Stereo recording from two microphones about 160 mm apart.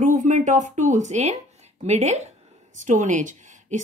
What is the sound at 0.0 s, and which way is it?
Speech, 55° right (ahead or behind).